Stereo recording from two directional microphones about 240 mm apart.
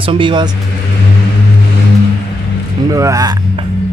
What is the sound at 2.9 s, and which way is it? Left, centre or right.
Speech, centre.